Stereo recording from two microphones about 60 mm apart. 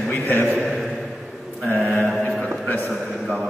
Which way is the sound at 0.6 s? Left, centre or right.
Centre.